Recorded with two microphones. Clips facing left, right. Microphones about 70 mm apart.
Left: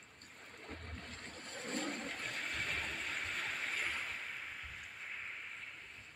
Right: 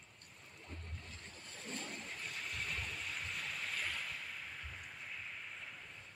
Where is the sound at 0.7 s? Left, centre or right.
Left.